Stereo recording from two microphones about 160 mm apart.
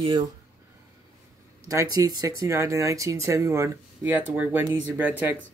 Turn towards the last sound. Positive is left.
turn(degrees=-10)  # may be behind; listen again after turning